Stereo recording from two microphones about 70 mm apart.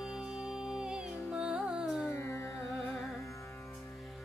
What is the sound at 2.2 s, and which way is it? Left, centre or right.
Carnatic music, left.